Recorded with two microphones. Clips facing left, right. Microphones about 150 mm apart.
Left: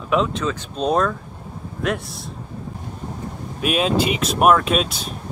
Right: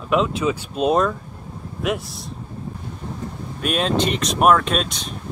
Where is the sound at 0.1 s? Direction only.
5° right (ahead or behind).